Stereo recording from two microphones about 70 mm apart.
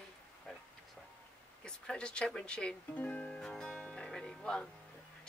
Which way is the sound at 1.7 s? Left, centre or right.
Centre.